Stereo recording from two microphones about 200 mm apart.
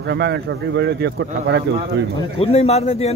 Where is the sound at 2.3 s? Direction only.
30° left (ahead or behind).